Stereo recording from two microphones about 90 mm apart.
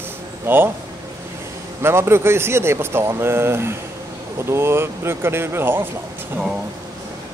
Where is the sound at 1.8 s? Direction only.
30° right (ahead or behind).